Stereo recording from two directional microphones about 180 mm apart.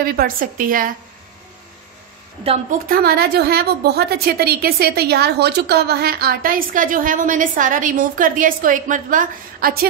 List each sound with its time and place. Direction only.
0.0 s a woman's voice: 55° right (ahead or behind)
2.9 s a woman's voice: 60° right (ahead or behind)